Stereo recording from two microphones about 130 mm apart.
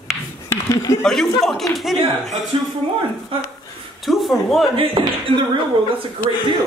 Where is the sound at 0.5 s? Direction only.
20° left (ahead or behind).